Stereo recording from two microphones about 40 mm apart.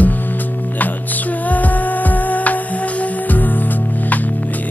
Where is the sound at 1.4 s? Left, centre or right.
Left.